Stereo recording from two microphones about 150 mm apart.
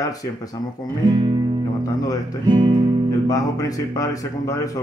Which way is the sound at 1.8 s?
25° left (ahead or behind).